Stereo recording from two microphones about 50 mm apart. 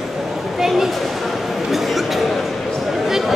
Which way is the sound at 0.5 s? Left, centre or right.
Centre.